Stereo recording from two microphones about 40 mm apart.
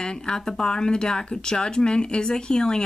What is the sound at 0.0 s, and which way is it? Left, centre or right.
Speech, centre.